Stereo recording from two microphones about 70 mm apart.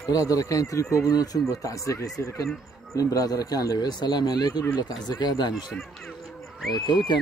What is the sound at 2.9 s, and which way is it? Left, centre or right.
Speech, left.